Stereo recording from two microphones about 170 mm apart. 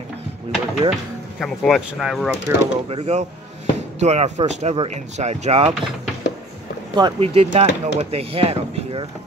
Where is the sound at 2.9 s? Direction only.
35° right (ahead or behind).